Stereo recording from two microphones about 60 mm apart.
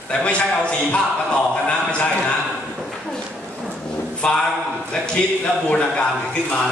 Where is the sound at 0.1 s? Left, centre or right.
Centre.